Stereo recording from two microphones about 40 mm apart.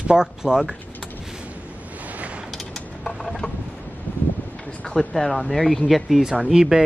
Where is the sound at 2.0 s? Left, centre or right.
Right.